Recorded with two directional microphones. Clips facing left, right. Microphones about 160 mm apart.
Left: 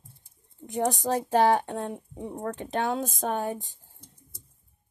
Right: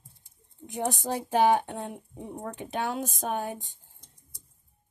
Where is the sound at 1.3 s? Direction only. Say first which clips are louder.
Even; 10° right (ahead or behind).